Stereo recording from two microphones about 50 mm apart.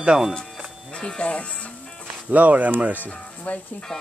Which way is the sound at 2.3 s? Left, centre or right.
Right.